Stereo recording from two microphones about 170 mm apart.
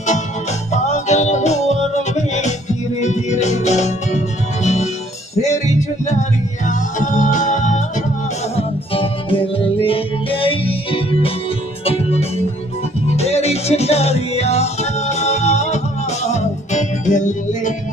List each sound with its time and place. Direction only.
0.7 s music: 45° left (ahead or behind)
5.3 s music: 40° left (ahead or behind)
8.5 s music: 35° left (ahead or behind)